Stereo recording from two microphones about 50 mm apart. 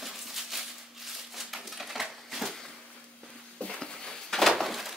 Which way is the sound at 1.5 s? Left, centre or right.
Centre.